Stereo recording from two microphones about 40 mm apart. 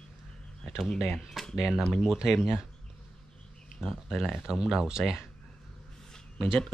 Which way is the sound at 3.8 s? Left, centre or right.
Centre.